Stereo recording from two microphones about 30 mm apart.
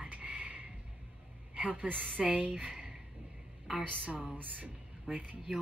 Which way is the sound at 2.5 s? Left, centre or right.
Right.